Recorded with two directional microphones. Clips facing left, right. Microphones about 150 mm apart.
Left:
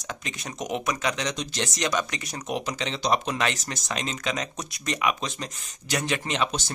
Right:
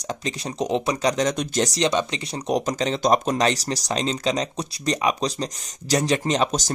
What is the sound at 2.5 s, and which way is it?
Speech, 40° right (ahead or behind).